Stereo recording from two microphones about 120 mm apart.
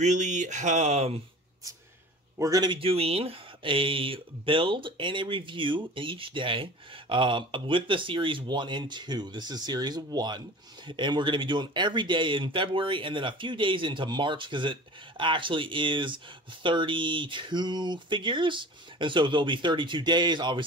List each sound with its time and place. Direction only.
0.0 s speech: 85° right; by 1.2 s 60° right (ahead or behind)
2.3 s a man's voice: 25° right (ahead or behind)
2.8 s speech: 55° right (ahead or behind)